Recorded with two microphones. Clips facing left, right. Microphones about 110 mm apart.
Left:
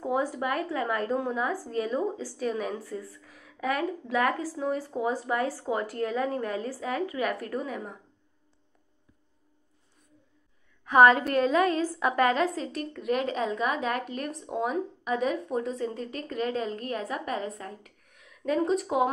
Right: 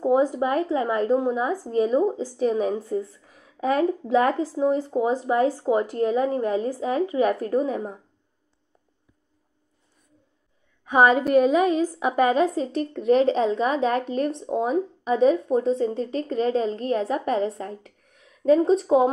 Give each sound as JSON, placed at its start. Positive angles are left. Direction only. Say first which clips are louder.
{"t": 0.0, "sound": "a woman's voice", "louder": "right 8 dB", "side_deg": -20}
{"t": 10.9, "sound": "a woman's voice", "louder": "right 1 dB", "side_deg": -20}